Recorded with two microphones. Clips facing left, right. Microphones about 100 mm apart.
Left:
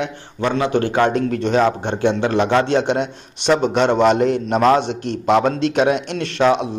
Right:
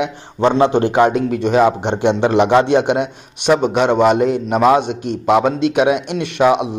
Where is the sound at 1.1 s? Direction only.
5° right (ahead or behind).